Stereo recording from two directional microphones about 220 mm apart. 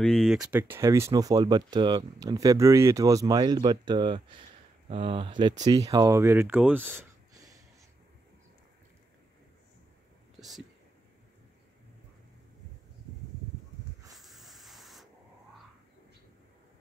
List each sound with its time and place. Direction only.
0.0 s speech: centre (ahead or behind)
0.4 s speech: 10° right (ahead or behind)
14.1 s spray: centre (ahead or behind)